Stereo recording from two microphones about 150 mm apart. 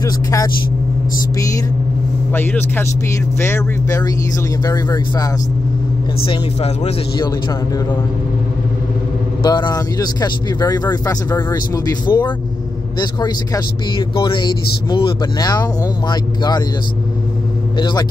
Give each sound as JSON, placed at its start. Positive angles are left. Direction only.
{"t": 0.0, "sound": "speech", "side_deg": 25}
{"t": 2.3, "sound": "speech", "side_deg": 15}
{"t": 6.2, "sound": "speech", "side_deg": 40}
{"t": 9.4, "sound": "speech", "side_deg": 25}
{"t": 17.7, "sound": "speech", "side_deg": 30}